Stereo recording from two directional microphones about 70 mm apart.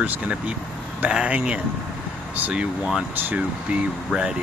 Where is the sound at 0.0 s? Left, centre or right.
Right.